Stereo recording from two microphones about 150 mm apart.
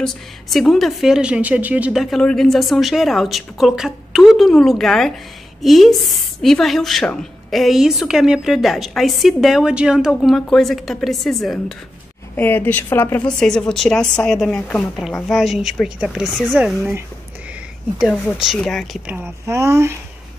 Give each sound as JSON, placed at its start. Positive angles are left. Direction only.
{"t": 0.0, "sound": "a woman's voice", "side_deg": 0}
{"t": 12.4, "sound": "a woman's voice", "side_deg": 10}
{"t": 19.0, "sound": "speech", "side_deg": -15}